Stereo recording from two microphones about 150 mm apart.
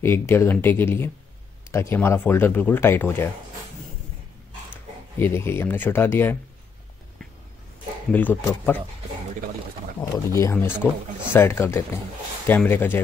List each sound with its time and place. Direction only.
0.0 s speech: 15° left (ahead or behind)
5.2 s speech: 15° left (ahead or behind)
8.1 s speech: 10° left (ahead or behind)
9.9 s speech: 20° left (ahead or behind)